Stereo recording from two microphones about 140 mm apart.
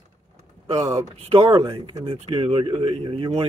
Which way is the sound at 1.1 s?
45° right (ahead or behind).